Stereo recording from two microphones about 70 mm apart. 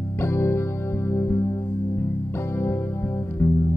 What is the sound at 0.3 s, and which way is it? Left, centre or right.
Music, left.